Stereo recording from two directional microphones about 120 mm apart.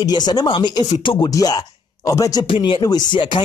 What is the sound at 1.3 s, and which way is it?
Speech, 30° left (ahead or behind).